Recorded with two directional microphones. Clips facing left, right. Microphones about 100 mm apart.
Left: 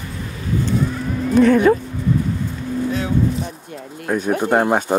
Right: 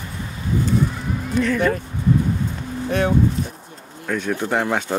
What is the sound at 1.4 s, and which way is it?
Speech, 50° left (ahead or behind).